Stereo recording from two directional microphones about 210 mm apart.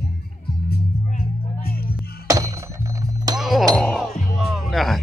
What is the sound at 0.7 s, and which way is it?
Speech, 45° left (ahead or behind).